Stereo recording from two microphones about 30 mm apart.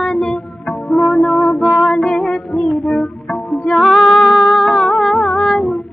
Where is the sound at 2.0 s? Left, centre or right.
Left.